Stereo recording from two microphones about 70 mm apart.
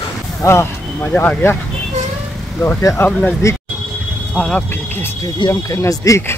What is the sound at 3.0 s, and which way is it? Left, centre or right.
Speech, centre.